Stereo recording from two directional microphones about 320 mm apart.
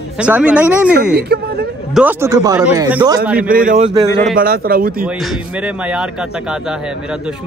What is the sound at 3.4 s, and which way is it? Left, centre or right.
A man's voice, right.